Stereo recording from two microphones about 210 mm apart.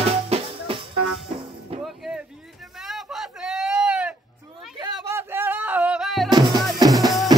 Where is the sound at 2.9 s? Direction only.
Centre (ahead or behind).